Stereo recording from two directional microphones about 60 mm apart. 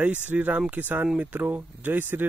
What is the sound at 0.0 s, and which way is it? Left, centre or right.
Speech, right.